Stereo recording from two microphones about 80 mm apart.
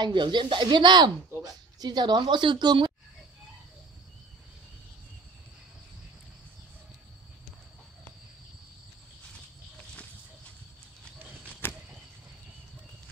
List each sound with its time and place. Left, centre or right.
0.0 s speech: right
1.4 s speech: right
11.6 s a sound: left